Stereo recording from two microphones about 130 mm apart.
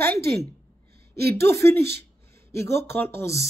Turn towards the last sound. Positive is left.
turn(degrees=20)  # may be behind; listen again after turning